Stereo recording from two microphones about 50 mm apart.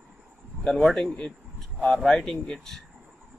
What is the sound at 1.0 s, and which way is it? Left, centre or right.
Speech, left.